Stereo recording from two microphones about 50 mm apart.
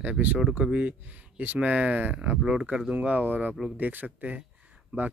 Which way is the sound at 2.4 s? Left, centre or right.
Centre.